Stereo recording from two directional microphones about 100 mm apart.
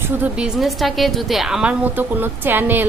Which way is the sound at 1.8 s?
20° right (ahead or behind).